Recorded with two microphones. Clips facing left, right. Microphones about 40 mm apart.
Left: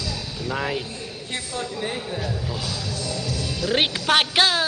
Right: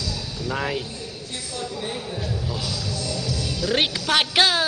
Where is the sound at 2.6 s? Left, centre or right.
Left.